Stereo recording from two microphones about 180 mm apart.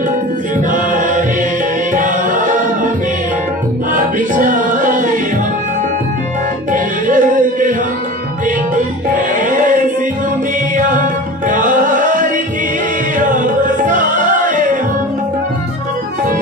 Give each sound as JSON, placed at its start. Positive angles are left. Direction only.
{"t": 0.7, "sound": "chant", "side_deg": -45}
{"t": 2.0, "sound": "a capella", "side_deg": -45}
{"t": 3.9, "sound": "music", "side_deg": -50}
{"t": 6.7, "sound": "music", "side_deg": -45}
{"t": 10.8, "sound": "music", "side_deg": -45}